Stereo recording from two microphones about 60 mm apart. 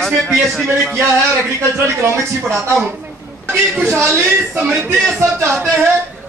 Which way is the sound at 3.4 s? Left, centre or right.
Right.